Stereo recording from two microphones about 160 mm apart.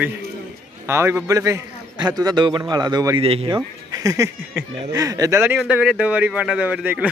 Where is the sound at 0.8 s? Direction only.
15° right (ahead or behind).